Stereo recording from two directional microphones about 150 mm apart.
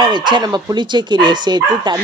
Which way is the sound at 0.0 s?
30° right (ahead or behind).